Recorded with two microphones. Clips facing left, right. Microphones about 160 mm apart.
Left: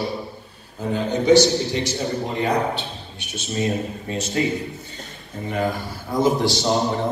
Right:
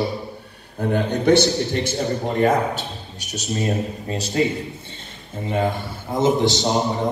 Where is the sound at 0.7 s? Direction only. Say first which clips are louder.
Right 2 dB; 60° right (ahead or behind); by 4.2 s 35° right (ahead or behind).